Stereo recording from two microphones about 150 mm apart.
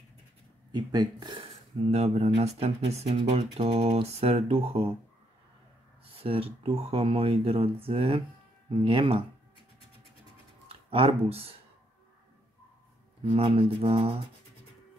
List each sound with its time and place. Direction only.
0.7 s speech: 30° right (ahead or behind)
6.1 s speech: 40° right (ahead or behind)
10.7 s speech: 40° right (ahead or behind)
13.2 s speech: 35° right (ahead or behind)